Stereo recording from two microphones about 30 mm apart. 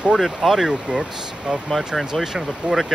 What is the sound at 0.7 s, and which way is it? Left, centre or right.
Speech, right.